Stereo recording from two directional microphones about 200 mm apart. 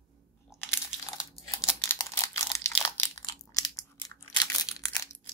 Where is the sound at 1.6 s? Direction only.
15° left (ahead or behind).